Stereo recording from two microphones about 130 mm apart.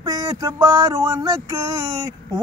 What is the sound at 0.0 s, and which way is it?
Speech, 30° right (ahead or behind).